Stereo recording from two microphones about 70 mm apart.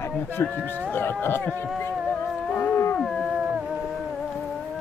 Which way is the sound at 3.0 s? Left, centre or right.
Centre.